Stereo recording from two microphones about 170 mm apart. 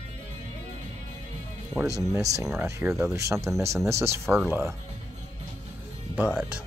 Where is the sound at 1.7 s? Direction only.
15° right (ahead or behind).